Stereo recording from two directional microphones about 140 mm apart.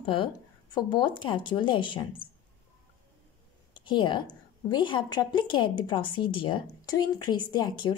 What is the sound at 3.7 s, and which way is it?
A woman's voice, 35° left (ahead or behind).